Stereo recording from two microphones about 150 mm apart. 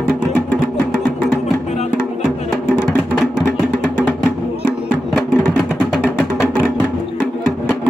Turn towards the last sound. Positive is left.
turn(degrees=0)  # may be behind; listen again after turning